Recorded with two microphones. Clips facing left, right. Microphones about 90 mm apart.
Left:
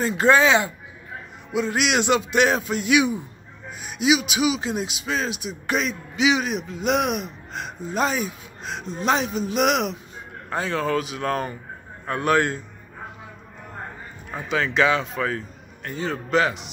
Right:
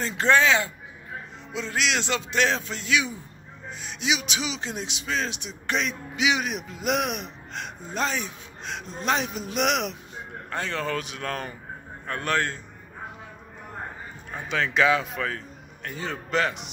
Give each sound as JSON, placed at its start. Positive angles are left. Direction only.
{"t": 0.0, "sound": "a man's voice", "side_deg": 10}
{"t": 14.3, "sound": "a man's voice", "side_deg": 0}